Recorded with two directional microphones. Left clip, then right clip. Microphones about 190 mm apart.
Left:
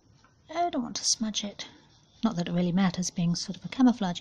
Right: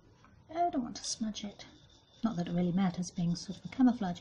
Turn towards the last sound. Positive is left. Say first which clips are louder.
# left 5 dB
turn(degrees=35)  # may be behind; listen again after turning